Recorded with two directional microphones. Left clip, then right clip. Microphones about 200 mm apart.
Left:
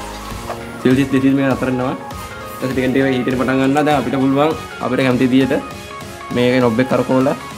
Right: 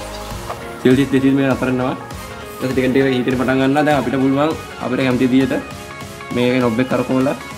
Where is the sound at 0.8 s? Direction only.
5° left (ahead or behind).